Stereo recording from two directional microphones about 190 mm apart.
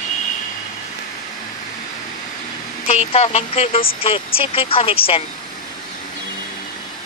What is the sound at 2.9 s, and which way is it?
Speech, 35° left (ahead or behind).